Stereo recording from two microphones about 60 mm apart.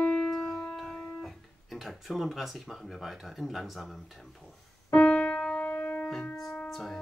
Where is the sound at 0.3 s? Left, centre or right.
Centre.